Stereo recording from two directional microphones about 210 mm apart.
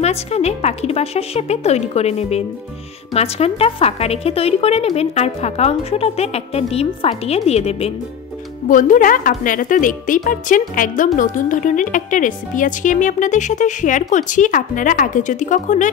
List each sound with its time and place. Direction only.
0.0 s a woman's voice: 30° left (ahead or behind)